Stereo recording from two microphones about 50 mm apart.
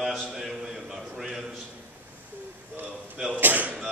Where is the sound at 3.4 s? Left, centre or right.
Right.